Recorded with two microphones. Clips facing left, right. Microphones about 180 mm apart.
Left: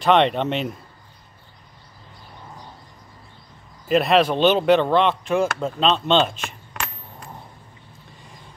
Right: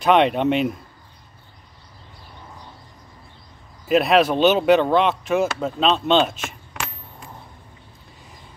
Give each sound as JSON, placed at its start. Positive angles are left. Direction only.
{"t": 0.0, "sound": "speech", "side_deg": -5}
{"t": 3.8, "sound": "speech", "side_deg": -5}
{"t": 6.4, "sound": "a sound", "side_deg": -5}